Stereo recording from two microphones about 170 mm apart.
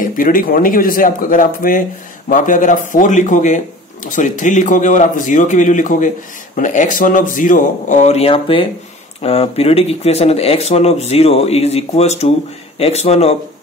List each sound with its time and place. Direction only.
0.0 s speech: 55° left (ahead or behind); by 13.4 s 35° left (ahead or behind)